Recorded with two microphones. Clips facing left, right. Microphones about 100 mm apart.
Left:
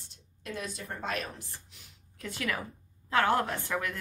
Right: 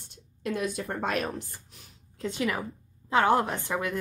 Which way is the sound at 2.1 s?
20° right (ahead or behind).